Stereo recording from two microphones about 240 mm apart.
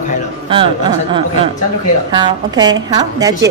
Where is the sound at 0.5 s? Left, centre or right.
Right.